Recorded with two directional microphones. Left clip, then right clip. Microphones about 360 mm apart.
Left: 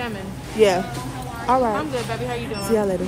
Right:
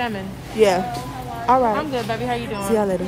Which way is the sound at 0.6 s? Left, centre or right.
Centre.